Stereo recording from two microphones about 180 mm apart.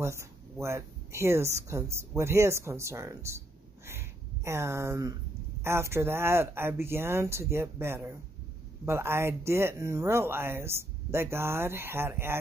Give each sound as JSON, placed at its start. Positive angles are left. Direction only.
{"t": 0.0, "sound": "speech", "side_deg": -15}